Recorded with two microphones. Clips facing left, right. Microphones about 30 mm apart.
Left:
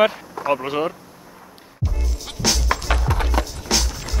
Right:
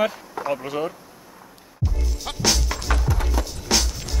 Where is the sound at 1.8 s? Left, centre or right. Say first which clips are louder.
Right 1 dB; centre.